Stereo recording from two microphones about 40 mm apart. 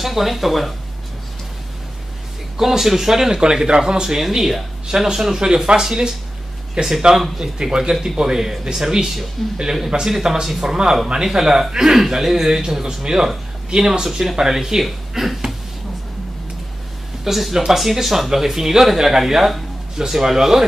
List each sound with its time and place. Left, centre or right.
0.0 s speech: centre
2.5 s speech: centre
3.3 s speech: centre
17.2 s speech: centre